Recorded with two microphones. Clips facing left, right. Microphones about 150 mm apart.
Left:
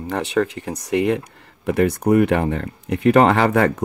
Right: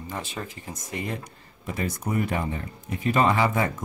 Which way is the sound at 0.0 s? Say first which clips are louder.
Left 13 dB; 70° left (ahead or behind).